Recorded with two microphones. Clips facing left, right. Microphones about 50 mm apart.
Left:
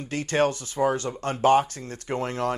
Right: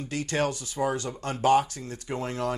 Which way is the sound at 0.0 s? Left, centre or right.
Left.